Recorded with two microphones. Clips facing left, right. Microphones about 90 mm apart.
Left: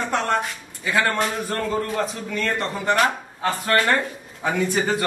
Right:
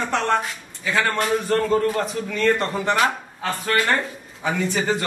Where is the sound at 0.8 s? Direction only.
5° left (ahead or behind).